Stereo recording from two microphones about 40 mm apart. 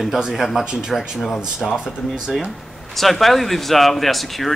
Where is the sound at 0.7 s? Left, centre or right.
Centre.